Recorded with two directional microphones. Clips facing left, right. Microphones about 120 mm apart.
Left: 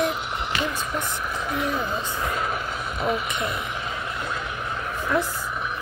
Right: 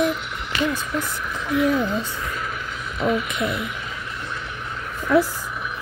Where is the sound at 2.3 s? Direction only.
35° left (ahead or behind).